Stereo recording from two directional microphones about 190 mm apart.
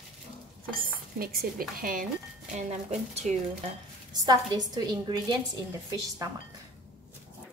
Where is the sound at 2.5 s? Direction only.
35° right (ahead or behind).